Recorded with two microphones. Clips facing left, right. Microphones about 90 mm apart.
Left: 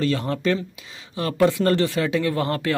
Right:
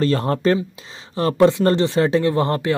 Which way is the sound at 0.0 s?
40° right (ahead or behind).